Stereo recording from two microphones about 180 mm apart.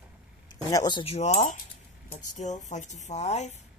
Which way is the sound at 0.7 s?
25° left (ahead or behind).